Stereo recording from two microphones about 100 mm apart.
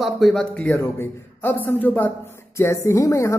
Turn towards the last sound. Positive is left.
turn(degrees=30)  # may be behind; listen again after turning